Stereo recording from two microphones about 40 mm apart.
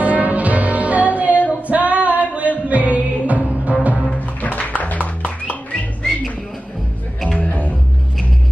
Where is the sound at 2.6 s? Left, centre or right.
Right.